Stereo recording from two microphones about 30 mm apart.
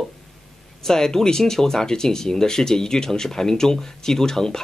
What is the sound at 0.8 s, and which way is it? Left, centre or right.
Speech, centre.